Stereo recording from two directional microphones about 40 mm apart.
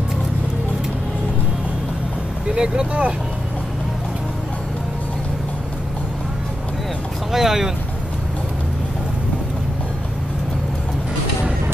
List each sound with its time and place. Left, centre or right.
2.4 s speech: right
7.3 s speech: centre